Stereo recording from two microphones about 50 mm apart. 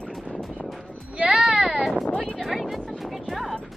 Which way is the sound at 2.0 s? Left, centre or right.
Centre.